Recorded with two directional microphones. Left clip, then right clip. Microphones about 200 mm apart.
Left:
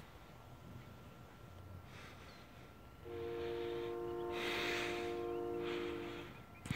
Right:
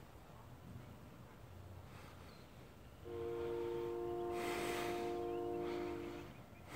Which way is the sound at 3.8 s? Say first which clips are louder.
Even; 45° right (ahead or behind).